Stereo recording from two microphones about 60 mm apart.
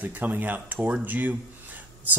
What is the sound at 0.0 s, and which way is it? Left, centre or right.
Speech, right.